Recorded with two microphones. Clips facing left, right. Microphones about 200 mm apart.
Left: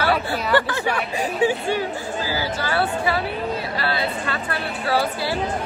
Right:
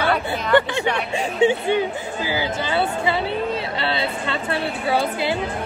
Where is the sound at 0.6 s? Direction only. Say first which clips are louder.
Right 5 dB; 20° right (ahead or behind).